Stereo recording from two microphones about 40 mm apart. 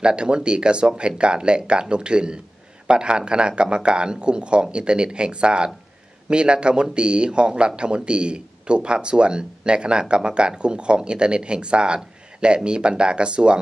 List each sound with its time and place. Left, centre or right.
0.0 s speech: right